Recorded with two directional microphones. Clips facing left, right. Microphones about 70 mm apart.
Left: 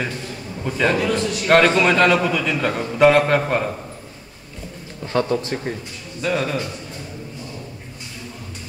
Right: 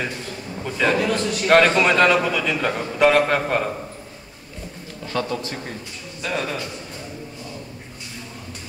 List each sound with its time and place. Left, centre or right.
0.7 s a man's voice: centre
5.1 s a man's voice: left
6.2 s a man's voice: centre